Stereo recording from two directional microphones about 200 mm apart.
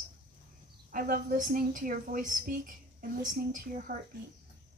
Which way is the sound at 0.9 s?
45° right (ahead or behind).